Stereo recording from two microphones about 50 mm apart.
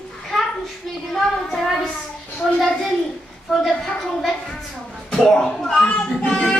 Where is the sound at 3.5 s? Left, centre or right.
Centre.